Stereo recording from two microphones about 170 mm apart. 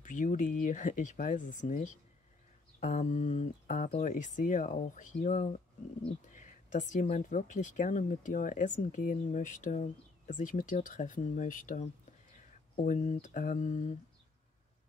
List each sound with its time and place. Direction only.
0.0 s speech: 50° left (ahead or behind)